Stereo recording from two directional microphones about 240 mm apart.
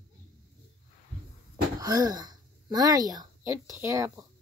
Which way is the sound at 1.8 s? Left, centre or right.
Centre.